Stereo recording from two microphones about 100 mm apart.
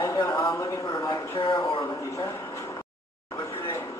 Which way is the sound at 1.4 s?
55° left (ahead or behind).